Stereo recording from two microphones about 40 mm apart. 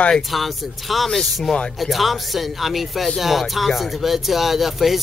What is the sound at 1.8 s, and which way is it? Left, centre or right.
Speech, centre.